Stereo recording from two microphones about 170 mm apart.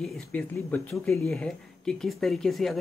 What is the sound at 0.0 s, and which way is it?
Speech, 5° left (ahead or behind).